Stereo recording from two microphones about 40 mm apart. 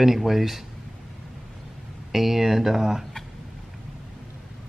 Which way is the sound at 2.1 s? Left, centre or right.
Centre.